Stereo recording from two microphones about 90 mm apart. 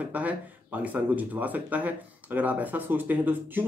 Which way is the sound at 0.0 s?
15° right (ahead or behind).